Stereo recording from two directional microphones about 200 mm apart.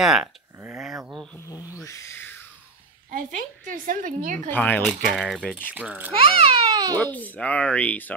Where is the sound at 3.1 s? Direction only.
45° right (ahead or behind).